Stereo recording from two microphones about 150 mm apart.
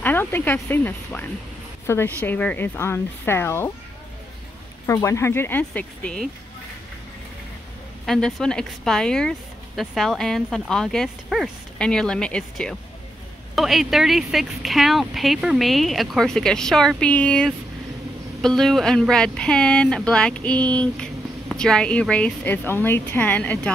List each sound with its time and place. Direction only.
0.0 s a woman's voice: 15° left (ahead or behind)
4.8 s a woman's voice: 20° left (ahead or behind)
8.0 s a woman's voice: 5° left (ahead or behind)